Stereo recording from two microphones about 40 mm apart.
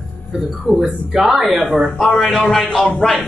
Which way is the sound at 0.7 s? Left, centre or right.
Centre.